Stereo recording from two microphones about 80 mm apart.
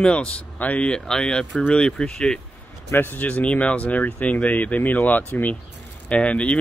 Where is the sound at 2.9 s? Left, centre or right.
Left.